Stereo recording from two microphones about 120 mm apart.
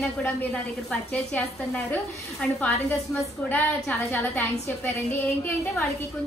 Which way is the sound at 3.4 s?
15° left (ahead or behind).